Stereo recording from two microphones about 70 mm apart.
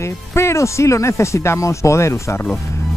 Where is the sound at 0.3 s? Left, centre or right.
Left.